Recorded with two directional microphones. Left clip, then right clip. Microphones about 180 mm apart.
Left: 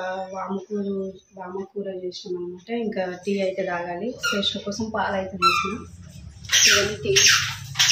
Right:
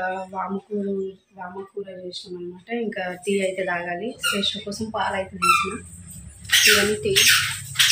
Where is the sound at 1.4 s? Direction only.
10° right (ahead or behind).